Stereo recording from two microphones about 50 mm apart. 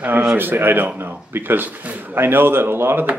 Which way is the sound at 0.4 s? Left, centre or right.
Right.